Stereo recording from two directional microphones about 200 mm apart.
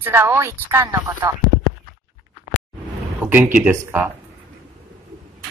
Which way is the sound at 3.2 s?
10° right (ahead or behind).